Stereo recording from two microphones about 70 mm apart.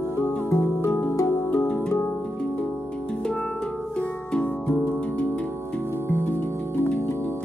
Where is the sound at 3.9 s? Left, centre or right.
Centre.